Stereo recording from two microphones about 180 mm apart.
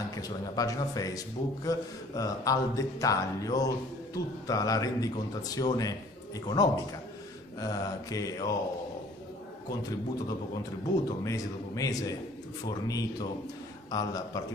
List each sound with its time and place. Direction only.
0.1 s a man's voice: 20° left (ahead or behind)
11.2 s a man's voice: 20° left (ahead or behind)